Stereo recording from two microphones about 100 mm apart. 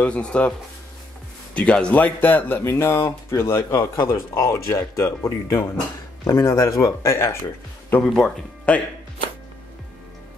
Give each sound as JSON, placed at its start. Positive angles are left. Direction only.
{"t": 0.0, "sound": "speech", "side_deg": 10}
{"t": 8.0, "sound": "speech", "side_deg": 5}